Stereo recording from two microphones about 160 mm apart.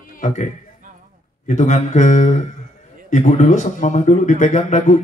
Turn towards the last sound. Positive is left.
turn(degrees=50)  # may be behind; listen again after turning